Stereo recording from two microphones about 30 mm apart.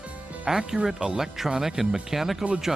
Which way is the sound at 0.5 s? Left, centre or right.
Centre.